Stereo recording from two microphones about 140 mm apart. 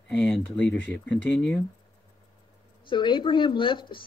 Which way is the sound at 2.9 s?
35° left (ahead or behind).